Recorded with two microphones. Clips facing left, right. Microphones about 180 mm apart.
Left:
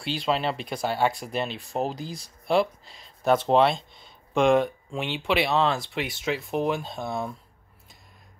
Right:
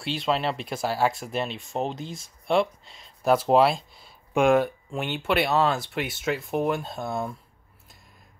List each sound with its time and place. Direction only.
0.0 s speech: centre (ahead or behind)